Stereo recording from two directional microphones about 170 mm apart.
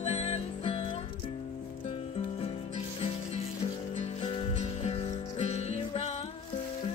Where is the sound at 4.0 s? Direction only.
35° left (ahead or behind).